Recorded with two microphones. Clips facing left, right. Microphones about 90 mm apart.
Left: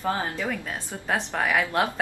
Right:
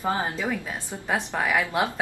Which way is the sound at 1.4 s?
5° right (ahead or behind).